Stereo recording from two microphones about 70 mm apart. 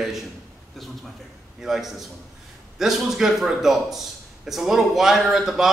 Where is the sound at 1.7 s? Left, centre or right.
Centre.